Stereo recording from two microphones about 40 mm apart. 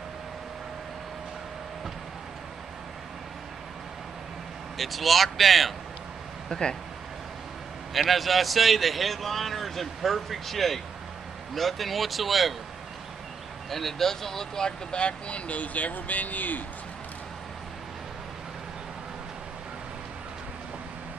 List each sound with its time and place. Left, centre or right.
4.7 s a man's voice: centre
6.5 s speech: centre
7.9 s a man's voice: centre
13.7 s speech: centre; by 16.6 s left